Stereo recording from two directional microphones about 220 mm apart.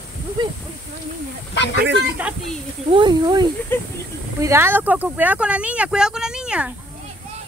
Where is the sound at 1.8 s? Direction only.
50° right (ahead or behind).